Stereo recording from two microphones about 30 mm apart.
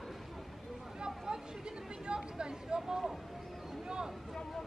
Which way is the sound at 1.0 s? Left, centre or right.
Right.